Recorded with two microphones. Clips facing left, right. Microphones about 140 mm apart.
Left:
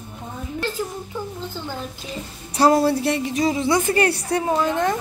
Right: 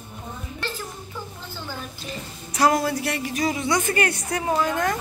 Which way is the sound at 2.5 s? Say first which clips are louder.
Left 4 dB; 30° left (ahead or behind).